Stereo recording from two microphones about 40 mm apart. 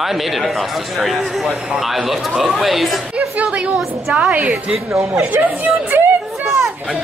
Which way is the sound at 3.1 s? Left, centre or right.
Right.